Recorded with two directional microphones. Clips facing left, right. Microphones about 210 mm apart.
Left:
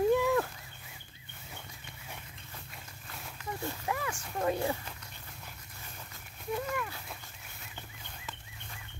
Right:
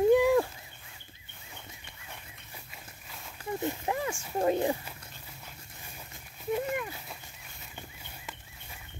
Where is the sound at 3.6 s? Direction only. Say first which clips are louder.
Right 4 dB; 20° right (ahead or behind).